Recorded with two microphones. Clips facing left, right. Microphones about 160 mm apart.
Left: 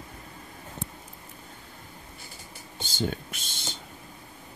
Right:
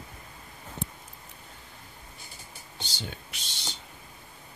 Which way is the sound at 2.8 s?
50° left (ahead or behind).